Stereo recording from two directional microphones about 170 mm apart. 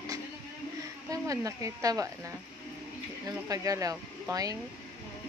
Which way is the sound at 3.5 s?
20° right (ahead or behind).